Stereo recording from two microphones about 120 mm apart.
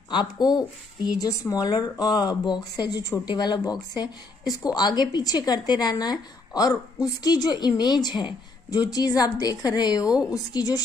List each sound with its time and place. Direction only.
0.1 s speech: 35° left (ahead or behind)